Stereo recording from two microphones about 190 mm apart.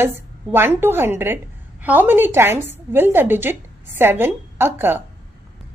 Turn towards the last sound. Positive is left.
turn(degrees=-10)  # may be behind; listen again after turning